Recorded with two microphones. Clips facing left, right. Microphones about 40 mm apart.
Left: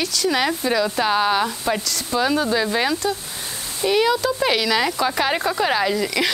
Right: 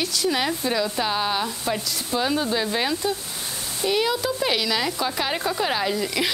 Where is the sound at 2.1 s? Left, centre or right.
Centre.